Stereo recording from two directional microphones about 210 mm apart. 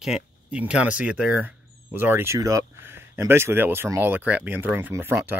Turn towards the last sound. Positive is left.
turn(degrees=-10)  # may be behind; listen again after turning